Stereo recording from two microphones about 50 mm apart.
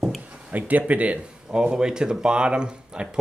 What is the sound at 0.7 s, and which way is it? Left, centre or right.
Speech, right.